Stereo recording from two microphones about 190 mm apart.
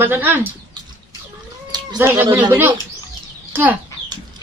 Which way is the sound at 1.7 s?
20° right (ahead or behind).